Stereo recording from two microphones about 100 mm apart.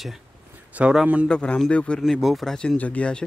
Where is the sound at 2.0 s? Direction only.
5° right (ahead or behind); by 3.2 s 10° left (ahead or behind).